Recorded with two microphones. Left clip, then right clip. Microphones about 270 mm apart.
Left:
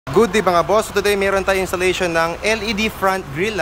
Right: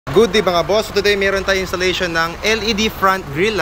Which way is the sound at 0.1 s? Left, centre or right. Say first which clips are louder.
Right 1 dB; centre.